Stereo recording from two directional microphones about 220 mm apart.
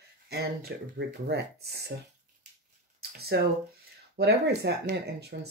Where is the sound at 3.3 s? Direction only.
50° right (ahead or behind).